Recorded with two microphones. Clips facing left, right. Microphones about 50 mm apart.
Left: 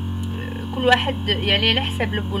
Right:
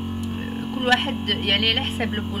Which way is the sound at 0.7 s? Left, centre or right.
Centre.